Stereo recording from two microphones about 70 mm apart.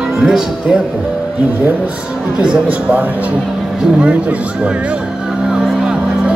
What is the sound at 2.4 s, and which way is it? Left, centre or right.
Speech, centre.